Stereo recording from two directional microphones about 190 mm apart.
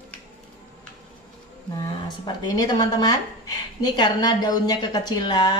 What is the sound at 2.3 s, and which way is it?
A woman's voice, 25° left (ahead or behind).